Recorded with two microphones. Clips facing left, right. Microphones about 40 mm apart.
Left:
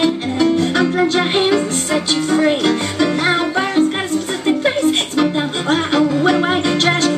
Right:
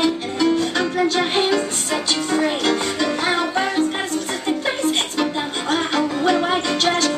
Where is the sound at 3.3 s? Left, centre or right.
Left.